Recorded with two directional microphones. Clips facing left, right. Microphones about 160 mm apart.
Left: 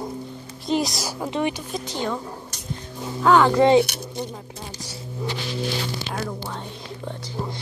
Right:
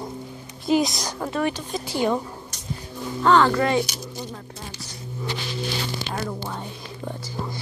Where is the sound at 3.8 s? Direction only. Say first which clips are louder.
Left 4 dB; 65° left (ahead or behind).